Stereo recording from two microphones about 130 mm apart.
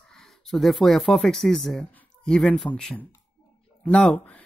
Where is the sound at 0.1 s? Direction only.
Centre (ahead or behind).